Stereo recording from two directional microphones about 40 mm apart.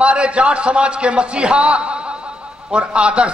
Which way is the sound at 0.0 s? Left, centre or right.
Right.